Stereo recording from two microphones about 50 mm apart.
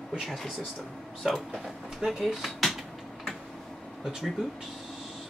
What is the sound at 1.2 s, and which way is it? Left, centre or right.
Speech, centre.